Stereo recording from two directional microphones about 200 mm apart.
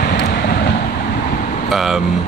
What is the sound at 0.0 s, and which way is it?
Vehicle, 55° left (ahead or behind).